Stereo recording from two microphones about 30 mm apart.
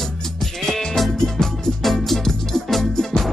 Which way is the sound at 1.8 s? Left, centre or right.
Centre.